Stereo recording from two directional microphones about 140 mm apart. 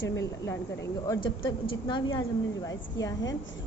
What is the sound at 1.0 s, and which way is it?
A woman's voice, 30° left (ahead or behind).